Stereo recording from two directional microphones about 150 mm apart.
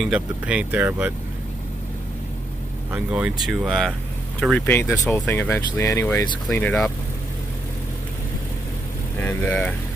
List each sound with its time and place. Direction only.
0.0 s speech: 5° right (ahead or behind)
2.9 s speech: 10° right (ahead or behind); by 6.2 s 20° left (ahead or behind)
6.5 s speech: 10° left (ahead or behind)
9.2 s speech: 10° left (ahead or behind)